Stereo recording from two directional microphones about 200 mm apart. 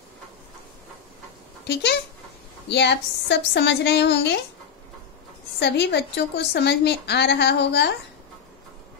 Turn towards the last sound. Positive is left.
turn(degrees=60)  # may be behind; listen again after turning